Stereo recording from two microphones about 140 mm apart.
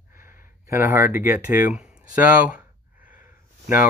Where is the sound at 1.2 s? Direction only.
15° right (ahead or behind).